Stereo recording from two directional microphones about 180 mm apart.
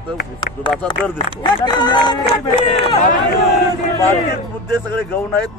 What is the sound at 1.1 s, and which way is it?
Speech, 25° left (ahead or behind).